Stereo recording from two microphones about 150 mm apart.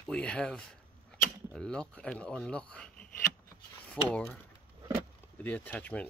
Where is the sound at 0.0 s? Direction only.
5° left (ahead or behind).